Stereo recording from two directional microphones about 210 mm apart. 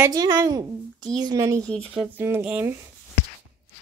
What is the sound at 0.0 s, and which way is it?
A woman's voice, 20° right (ahead or behind).